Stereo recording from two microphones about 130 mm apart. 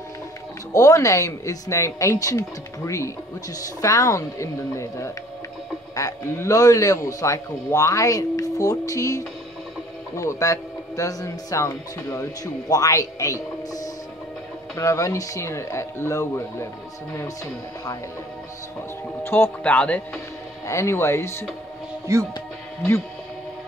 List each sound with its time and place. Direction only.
0.7 s speech: 25° left (ahead or behind)
19.2 s speech: 15° left (ahead or behind)
20.6 s speech: 20° left (ahead or behind)
22.1 s speech: 20° right (ahead or behind)